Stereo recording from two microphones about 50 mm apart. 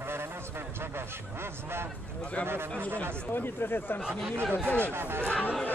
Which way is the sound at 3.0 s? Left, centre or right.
Left.